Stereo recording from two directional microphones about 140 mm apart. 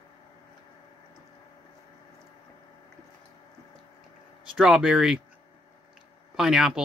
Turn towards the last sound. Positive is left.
turn(degrees=-5)  # may be behind; listen again after turning